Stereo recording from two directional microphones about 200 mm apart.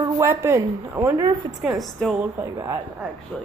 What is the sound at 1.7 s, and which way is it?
Speech, centre (ahead or behind).